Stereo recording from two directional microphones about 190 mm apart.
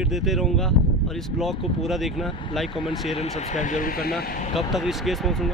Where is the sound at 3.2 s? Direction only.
35° left (ahead or behind).